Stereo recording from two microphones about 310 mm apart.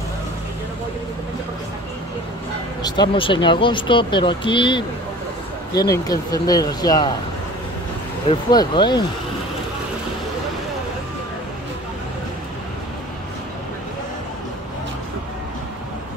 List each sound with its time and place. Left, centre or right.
2.8 s speech: centre
8.3 s speech: centre